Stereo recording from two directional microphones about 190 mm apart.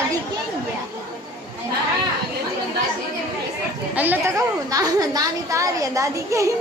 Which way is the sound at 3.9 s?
10° right (ahead or behind).